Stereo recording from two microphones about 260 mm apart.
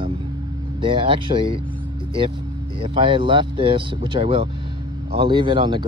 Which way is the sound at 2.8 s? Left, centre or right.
Centre.